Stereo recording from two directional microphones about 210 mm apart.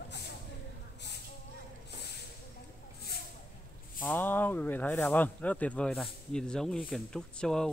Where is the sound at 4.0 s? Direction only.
10° left (ahead or behind).